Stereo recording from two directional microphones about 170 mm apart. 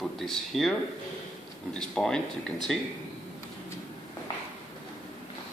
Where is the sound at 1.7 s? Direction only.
5° left (ahead or behind).